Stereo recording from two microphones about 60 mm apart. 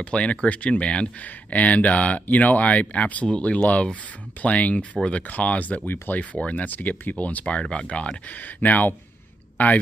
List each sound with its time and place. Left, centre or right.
0.0 s speech: centre